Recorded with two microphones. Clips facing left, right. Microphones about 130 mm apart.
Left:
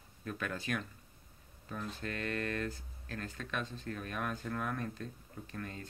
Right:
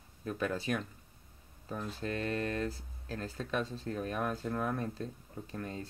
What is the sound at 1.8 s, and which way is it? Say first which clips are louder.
Speech: right 4 dB; 30° right (ahead or behind).